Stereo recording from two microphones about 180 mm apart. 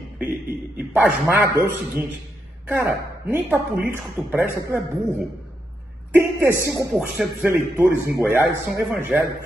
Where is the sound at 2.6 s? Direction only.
10° right (ahead or behind).